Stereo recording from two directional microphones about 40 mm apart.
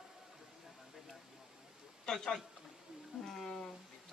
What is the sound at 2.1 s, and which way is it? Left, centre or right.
Speech, centre.